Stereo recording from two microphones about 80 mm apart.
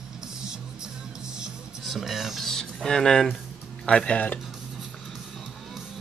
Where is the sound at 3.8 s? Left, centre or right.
Centre.